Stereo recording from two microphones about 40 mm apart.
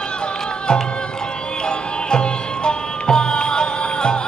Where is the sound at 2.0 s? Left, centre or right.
Left.